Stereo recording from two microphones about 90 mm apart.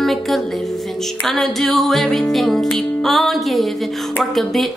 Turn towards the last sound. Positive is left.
turn(degrees=0)  # may be behind; listen again after turning